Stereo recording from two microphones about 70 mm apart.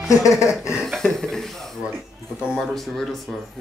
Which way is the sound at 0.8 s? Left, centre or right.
Centre.